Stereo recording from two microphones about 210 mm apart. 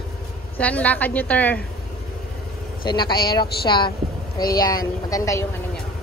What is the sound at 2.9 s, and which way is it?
A woman's voice, 20° left (ahead or behind).